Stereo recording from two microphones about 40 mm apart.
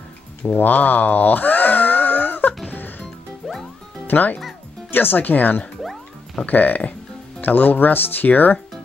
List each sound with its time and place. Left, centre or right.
0.4 s a sound: left
3.4 s music: centre
4.1 s speech: left